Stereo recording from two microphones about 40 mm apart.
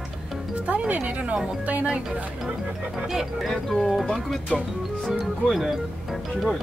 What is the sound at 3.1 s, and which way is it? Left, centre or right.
Speech, centre.